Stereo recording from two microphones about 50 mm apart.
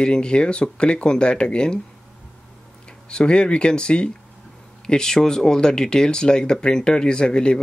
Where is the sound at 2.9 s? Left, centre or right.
Centre.